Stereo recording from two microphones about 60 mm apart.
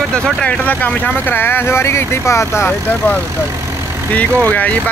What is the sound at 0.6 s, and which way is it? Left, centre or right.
Speech, left.